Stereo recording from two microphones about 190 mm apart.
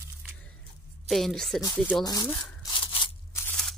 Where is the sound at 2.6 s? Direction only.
25° left (ahead or behind).